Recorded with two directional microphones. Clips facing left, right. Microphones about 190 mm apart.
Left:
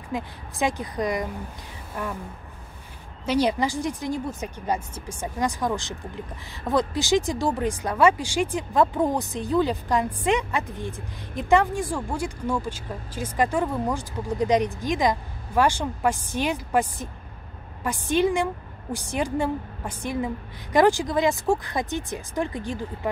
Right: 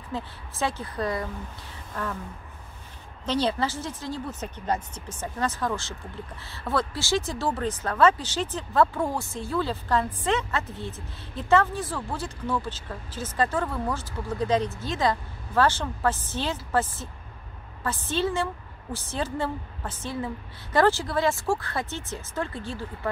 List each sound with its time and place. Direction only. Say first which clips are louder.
0.1 s a woman's voice: left 3 dB; 15° left (ahead or behind)
3.3 s a woman's voice: left 3 dB; 10° left (ahead or behind)